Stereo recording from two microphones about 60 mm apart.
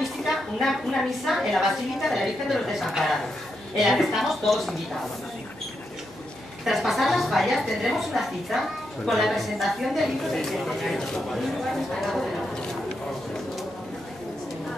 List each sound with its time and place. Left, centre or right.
0.2 s a woman's voice: centre
6.6 s a woman's voice: centre